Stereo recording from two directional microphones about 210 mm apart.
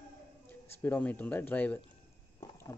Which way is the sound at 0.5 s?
10° left (ahead or behind).